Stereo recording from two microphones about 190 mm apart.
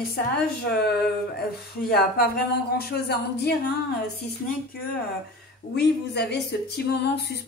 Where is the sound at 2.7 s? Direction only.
55° left (ahead or behind).